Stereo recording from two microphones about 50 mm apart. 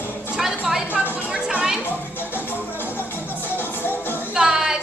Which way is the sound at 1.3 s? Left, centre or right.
Right.